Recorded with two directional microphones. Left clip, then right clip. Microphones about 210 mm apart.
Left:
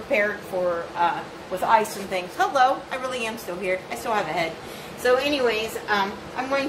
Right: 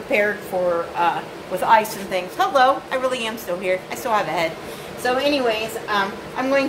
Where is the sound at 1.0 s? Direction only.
30° right (ahead or behind).